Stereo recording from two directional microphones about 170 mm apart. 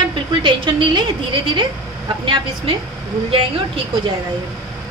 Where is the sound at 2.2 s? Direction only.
30° right (ahead or behind).